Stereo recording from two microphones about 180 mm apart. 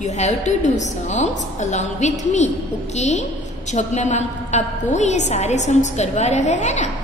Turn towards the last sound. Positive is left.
turn(degrees=40)  # may be behind; listen again after turning